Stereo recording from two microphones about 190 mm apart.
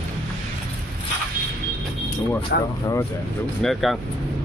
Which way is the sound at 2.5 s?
60° left (ahead or behind).